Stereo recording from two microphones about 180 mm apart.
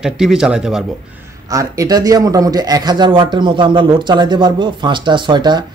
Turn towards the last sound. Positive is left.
turn(degrees=-25)  # may be behind; listen again after turning